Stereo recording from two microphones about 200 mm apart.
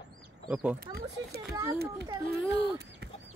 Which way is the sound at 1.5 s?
15° right (ahead or behind).